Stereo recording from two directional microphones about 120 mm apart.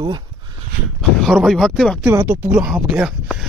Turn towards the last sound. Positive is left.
turn(degrees=-5)  # may be behind; listen again after turning